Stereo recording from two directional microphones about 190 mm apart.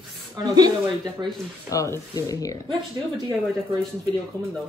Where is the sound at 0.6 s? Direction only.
20° right (ahead or behind).